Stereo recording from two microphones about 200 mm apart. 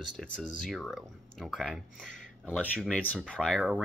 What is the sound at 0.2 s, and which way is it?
Speech, centre (ahead or behind).